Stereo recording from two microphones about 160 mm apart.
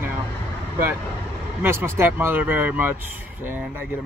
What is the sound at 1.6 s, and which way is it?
Speech, 15° right (ahead or behind).